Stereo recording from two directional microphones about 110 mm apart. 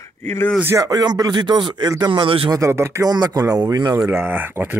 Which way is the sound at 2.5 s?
25° right (ahead or behind).